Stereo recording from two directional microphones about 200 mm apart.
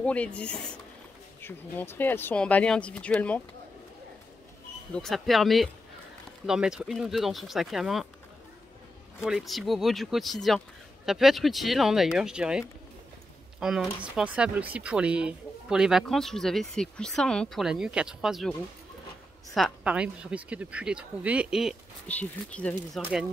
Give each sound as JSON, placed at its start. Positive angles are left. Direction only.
{"t": 0.0, "sound": "speech", "side_deg": 5}
{"t": 4.9, "sound": "speech", "side_deg": 0}
{"t": 9.2, "sound": "speech", "side_deg": 0}
{"t": 19.5, "sound": "speech", "side_deg": -5}